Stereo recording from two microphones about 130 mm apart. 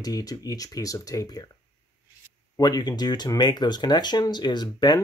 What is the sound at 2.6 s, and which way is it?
Speech, 30° left (ahead or behind).